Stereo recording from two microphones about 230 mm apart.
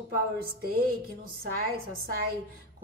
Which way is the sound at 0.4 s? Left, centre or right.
Right.